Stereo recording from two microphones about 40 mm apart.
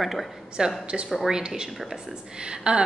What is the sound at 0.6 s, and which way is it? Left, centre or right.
Speech, centre.